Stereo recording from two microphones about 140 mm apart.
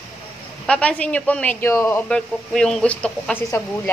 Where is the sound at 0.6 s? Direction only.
10° left (ahead or behind).